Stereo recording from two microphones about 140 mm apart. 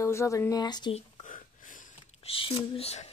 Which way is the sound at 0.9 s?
50° left (ahead or behind).